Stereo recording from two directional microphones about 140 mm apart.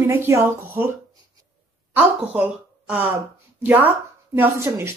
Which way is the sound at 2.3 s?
10° right (ahead or behind).